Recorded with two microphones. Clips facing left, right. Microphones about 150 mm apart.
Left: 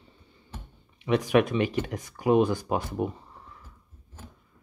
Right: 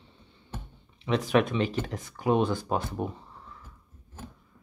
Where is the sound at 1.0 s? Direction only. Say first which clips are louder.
Left 2 dB; 15° left (ahead or behind).